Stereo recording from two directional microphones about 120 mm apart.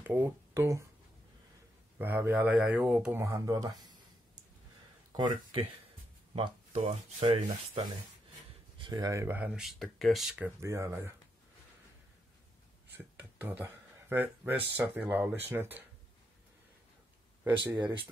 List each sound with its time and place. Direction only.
0.0 s speech: 20° right (ahead or behind)
2.0 s speech: 15° right (ahead or behind)
3.3 s speech: 30° right (ahead or behind)
5.1 s speech: 45° right (ahead or behind)
6.3 s a sound: 50° right (ahead or behind)
6.8 s speech: 60° right (ahead or behind)
7.2 s rub: 45° right (ahead or behind)
8.9 s speech: 25° right (ahead or behind)
9.4 s speech: 5° right (ahead or behind)
10.6 s speech: 25° right (ahead or behind)
12.9 s speech: 15° right (ahead or behind)
17.4 s speech: 15° right (ahead or behind)
17.7 s speech: 40° right (ahead or behind)